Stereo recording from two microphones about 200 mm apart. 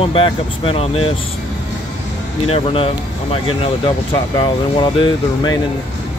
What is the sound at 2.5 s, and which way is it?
Speech, 25° left (ahead or behind).